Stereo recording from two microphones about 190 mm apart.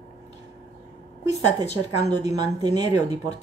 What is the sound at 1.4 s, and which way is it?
A woman's voice, 35° left (ahead or behind).